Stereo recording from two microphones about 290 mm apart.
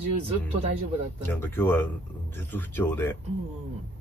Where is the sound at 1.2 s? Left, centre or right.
Centre.